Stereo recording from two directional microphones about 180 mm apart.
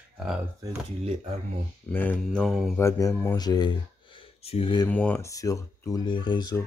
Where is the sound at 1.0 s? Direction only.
35° right (ahead or behind).